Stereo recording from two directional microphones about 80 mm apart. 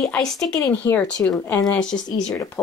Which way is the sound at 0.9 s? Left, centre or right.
Left.